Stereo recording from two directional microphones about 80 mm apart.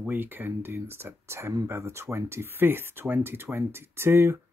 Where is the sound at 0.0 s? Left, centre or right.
Right.